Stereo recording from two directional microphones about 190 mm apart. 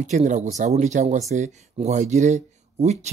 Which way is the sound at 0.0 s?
40° right (ahead or behind).